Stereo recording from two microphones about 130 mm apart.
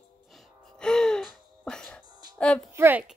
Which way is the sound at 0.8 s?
5° left (ahead or behind).